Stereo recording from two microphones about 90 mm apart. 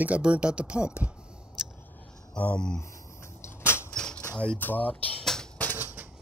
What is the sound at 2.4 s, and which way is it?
Speech, 10° left (ahead or behind).